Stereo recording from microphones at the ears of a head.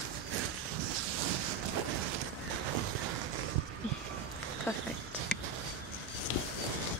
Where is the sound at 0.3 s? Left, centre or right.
Right.